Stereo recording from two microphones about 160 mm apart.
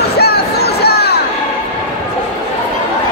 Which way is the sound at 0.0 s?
80° left.